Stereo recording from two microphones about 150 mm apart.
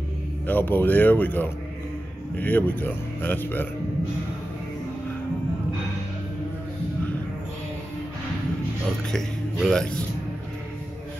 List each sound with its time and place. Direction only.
0.5 s speech: 15° left (ahead or behind)
9.1 s a man's voice: 5° left (ahead or behind)